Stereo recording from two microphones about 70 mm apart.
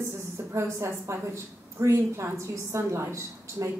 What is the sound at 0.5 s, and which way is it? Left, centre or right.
A woman's voice, right.